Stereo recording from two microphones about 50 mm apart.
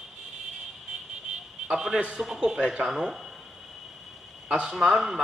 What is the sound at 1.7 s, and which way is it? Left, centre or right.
A man's voice, centre.